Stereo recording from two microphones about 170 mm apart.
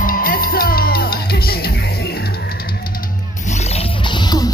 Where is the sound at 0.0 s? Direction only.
60° left (ahead or behind).